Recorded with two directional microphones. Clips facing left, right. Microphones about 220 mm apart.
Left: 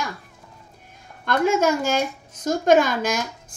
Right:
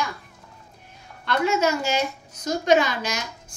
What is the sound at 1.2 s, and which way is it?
A woman's voice, 50° left (ahead or behind).